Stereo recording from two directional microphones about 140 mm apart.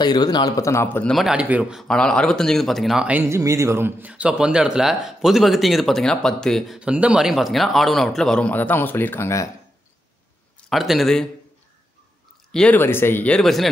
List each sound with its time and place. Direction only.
0.0 s a man's voice: 30° left (ahead or behind); by 1.1 s 15° left (ahead or behind)
1.1 s speech: 5° right (ahead or behind); by 9.5 s 20° left (ahead or behind)
10.7 s speech: centre (ahead or behind)
12.4 s speech: 5° left (ahead or behind)